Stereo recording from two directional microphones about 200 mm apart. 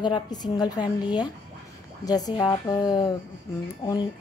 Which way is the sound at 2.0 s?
20° left (ahead or behind).